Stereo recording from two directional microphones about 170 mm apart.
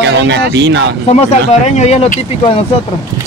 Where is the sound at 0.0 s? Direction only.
90° right.